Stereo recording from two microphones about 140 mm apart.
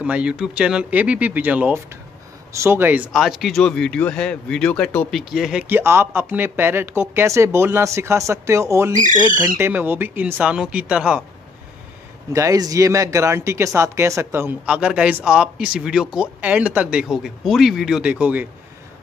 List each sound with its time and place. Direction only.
0.0 s speech: 10° right (ahead or behind)
3.1 s speech: centre (ahead or behind)
5.3 s speech: 5° right (ahead or behind); by 8.9 s 20° right (ahead or behind)
8.9 s speech: 65° right (ahead or behind)
9.6 s speech: 15° right (ahead or behind)
12.3 s speech: 25° right (ahead or behind)